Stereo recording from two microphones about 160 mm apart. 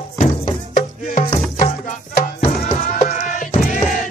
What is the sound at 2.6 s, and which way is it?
Sheep, 45° left (ahead or behind).